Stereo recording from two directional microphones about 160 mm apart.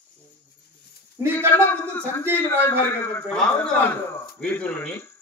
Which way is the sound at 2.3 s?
15° left (ahead or behind).